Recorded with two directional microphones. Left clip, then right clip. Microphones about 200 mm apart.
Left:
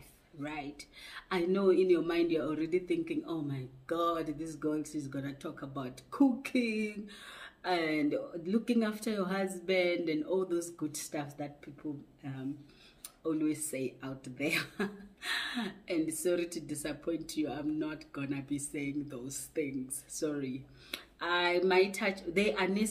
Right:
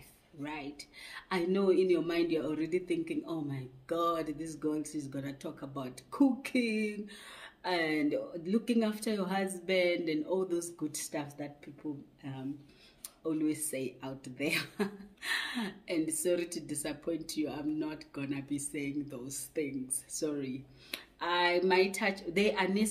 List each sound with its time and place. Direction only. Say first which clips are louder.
0.4 s a woman's voice: even; 5° right (ahead or behind)
13.2 s a woman's voice: even; 5° right (ahead or behind)